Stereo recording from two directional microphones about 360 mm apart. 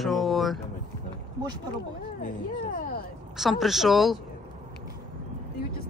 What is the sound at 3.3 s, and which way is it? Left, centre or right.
Speech, centre.